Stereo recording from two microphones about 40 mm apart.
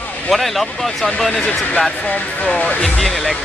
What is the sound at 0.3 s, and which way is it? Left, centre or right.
Speech, centre.